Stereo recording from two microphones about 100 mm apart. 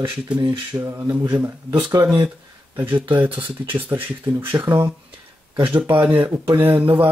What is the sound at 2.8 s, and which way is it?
Speech, 20° right (ahead or behind).